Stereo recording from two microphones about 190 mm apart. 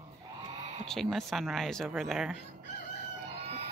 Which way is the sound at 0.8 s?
Centre (ahead or behind).